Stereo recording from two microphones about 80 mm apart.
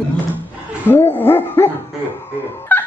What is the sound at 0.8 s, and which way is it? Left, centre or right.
Dog, left.